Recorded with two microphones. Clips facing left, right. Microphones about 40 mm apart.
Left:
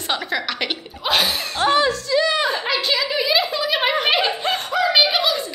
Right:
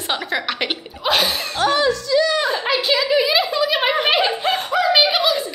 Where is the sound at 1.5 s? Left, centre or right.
Centre.